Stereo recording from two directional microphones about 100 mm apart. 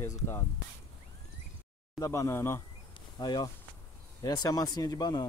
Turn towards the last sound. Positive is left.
turn(degrees=40)  # may be behind; listen again after turning